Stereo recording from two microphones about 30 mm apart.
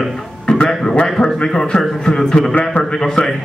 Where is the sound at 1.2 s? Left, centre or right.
Left.